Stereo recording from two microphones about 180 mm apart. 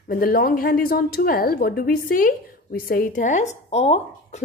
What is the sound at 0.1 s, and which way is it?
Speech, 55° left (ahead or behind).